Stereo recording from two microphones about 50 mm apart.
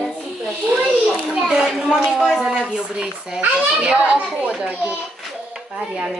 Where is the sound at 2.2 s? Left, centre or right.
Centre.